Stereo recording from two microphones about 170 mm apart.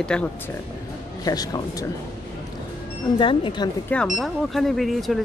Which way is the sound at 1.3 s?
20° left (ahead or behind).